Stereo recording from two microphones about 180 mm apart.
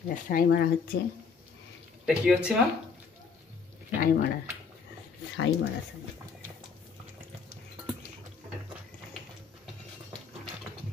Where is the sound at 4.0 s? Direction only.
55° left (ahead or behind).